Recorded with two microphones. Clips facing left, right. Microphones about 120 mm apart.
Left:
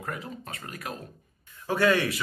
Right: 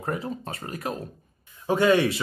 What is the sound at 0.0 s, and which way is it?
Speech, 30° right (ahead or behind).